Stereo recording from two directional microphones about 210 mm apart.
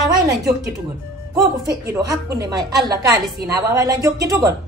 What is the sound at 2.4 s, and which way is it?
A woman's voice, 20° right (ahead or behind).